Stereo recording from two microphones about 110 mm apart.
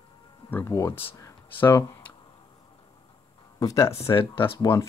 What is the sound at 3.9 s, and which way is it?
Speech, 60° left (ahead or behind).